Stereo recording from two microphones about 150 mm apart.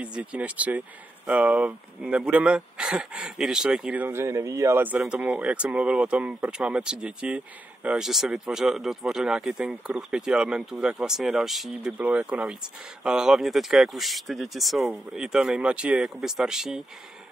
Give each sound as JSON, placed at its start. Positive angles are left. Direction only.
{"t": 0.0, "sound": "speech", "side_deg": -10}